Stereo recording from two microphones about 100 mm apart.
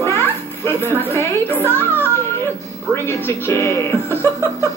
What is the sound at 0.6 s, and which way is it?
Speech, 25° left (ahead or behind).